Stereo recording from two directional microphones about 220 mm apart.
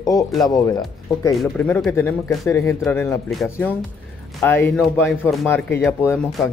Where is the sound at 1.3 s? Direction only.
5° left (ahead or behind).